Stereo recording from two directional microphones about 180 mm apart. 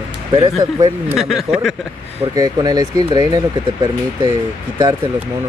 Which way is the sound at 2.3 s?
20° right (ahead or behind).